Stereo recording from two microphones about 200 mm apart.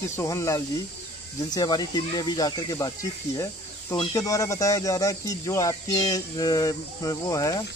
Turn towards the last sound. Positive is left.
turn(degrees=15)  # may be behind; listen again after turning